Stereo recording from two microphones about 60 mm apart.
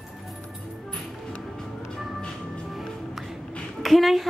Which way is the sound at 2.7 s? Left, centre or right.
Centre.